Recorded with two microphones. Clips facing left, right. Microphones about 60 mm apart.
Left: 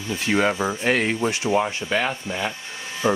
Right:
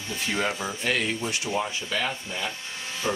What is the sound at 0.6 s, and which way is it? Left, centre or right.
Speech, left.